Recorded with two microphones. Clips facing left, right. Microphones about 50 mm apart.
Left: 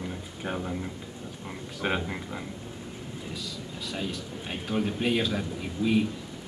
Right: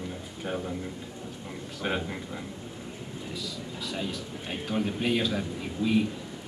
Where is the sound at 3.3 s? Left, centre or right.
Centre.